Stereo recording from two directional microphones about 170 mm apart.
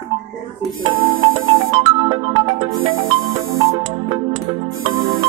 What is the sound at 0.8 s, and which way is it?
Music, 30° right (ahead or behind).